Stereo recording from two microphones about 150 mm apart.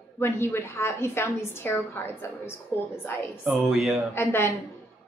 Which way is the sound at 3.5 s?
Centre (ahead or behind).